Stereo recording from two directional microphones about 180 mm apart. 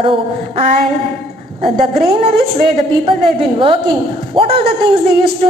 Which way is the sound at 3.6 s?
30° right (ahead or behind).